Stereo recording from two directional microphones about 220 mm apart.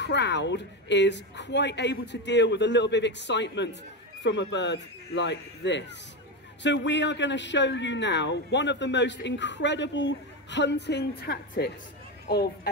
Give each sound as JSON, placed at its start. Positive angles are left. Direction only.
{"t": 0.0, "sound": "speech", "side_deg": 50}